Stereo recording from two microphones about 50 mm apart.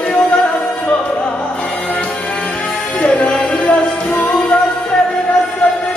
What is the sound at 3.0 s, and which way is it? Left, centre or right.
Music, left.